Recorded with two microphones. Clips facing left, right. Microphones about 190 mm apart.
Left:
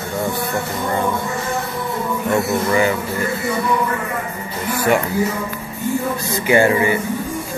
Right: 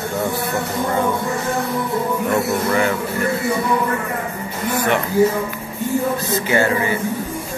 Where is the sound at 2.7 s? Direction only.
5° left (ahead or behind).